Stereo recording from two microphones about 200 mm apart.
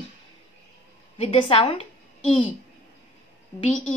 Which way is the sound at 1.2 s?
30° left (ahead or behind).